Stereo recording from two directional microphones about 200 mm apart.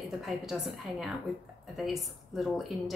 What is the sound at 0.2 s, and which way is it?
A woman's voice, centre (ahead or behind).